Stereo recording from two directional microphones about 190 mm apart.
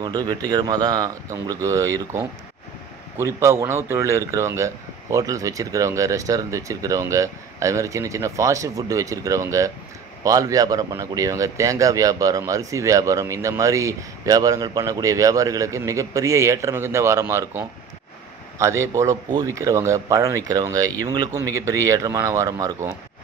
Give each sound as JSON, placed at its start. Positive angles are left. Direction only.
{"t": 0.0, "sound": "speech", "side_deg": -20}